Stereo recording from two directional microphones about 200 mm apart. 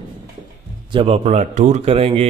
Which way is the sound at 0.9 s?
30° right (ahead or behind).